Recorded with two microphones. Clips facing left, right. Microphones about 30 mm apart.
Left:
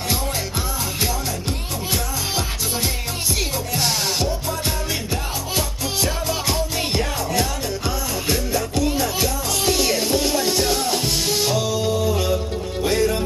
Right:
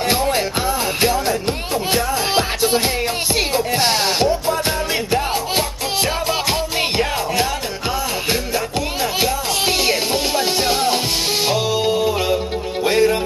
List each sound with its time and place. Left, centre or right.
2.3 s music: right
6.8 s music: right